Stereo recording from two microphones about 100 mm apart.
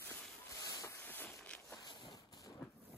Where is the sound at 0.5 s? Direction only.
35° left (ahead or behind); by 1.6 s 15° left (ahead or behind).